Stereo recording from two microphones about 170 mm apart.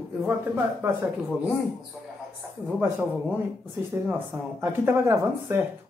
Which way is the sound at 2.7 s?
10° right (ahead or behind).